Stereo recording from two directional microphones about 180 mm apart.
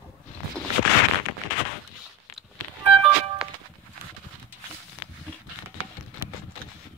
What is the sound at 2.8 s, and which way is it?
Music, 5° right (ahead or behind).